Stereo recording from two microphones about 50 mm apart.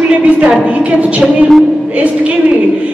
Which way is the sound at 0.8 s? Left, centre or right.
Right.